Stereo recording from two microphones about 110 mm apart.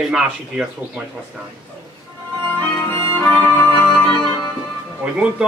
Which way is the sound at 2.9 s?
15° left (ahead or behind).